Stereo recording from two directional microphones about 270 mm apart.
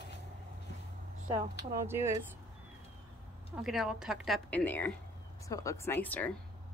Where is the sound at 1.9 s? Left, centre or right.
Centre.